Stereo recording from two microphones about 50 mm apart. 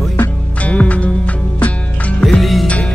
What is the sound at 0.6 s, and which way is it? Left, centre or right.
Music, left.